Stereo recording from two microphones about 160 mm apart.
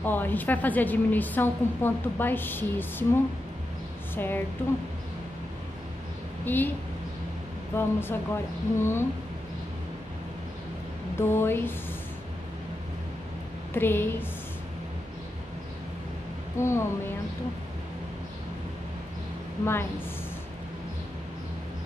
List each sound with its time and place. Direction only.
0.0 s a woman's voice: 10° left (ahead or behind)
4.1 s speech: 15° left (ahead or behind)
6.4 s a woman's voice: 10° left (ahead or behind)
7.7 s a woman's voice: 15° left (ahead or behind)
11.1 s a woman's voice: 15° left (ahead or behind)
13.7 s a woman's voice: 15° left (ahead or behind)
16.5 s a woman's voice: 15° left (ahead or behind)
19.6 s a woman's voice: 15° left (ahead or behind)